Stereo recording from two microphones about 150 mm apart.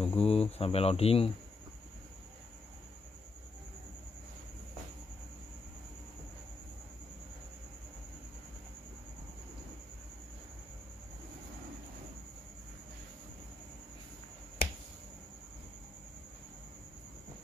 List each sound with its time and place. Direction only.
0.0 s speech: 40° left (ahead or behind)